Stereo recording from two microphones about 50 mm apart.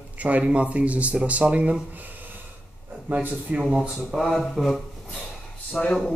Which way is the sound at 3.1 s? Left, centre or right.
Right.